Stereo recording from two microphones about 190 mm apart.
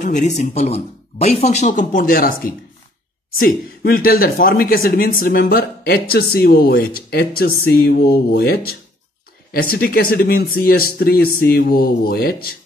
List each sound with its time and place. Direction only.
0.0 s speech: 40° left (ahead or behind)